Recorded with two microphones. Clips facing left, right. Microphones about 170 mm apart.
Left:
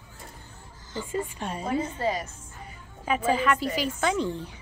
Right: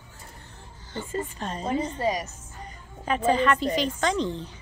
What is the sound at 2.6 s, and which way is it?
A woman's voice, 5° left (ahead or behind).